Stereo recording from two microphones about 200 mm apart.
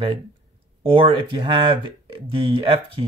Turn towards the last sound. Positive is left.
turn(degrees=-25)  # may be behind; listen again after turning